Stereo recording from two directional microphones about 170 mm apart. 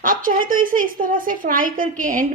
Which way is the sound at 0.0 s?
55° right (ahead or behind).